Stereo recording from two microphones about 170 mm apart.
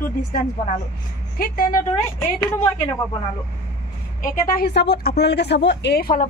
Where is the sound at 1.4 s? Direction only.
60° left (ahead or behind).